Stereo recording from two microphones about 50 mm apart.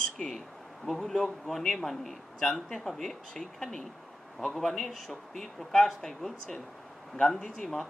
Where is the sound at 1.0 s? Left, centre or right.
Centre.